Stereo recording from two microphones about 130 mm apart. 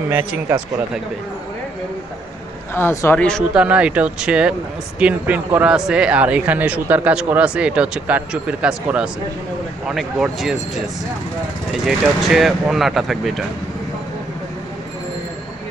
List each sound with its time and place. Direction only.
0.1 s speech: 10° right (ahead or behind)
2.7 s speech: 20° left (ahead or behind)
3.2 s speech: 5° left (ahead or behind)
3.5 s speech: 10° right (ahead or behind)
12.2 s speech: centre (ahead or behind)